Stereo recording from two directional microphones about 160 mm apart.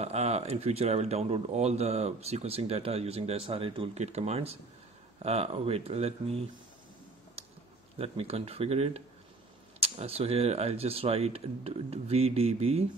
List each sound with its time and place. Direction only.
0.0 s speech: 40° right (ahead or behind)
7.4 s a sound: 40° right (ahead or behind)
8.0 s speech: 40° right (ahead or behind)